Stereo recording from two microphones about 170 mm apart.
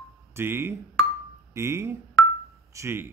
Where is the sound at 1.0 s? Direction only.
5° left (ahead or behind).